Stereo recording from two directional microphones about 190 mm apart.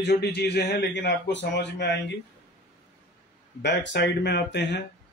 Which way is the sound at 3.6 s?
65° left (ahead or behind).